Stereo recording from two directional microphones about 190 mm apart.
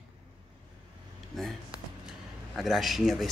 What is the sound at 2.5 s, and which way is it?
Speech, centre (ahead or behind).